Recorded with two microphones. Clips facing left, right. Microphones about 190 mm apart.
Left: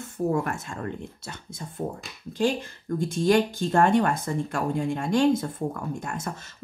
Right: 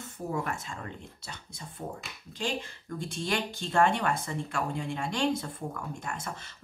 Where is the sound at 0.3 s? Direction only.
50° left (ahead or behind).